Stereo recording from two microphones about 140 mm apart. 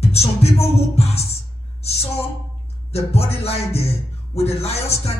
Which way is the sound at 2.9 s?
45° left (ahead or behind).